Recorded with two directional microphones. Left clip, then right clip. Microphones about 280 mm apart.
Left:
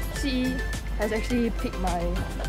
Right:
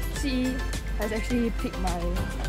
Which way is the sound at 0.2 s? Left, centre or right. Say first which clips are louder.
Left 1 dB; centre.